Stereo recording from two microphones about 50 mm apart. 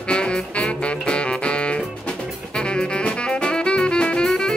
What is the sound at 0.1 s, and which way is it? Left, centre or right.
Music, centre.